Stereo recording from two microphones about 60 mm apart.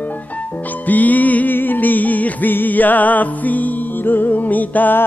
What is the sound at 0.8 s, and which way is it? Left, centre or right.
Music, left.